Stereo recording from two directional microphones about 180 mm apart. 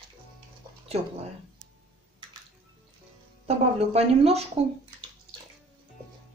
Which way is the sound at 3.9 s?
35° right (ahead or behind).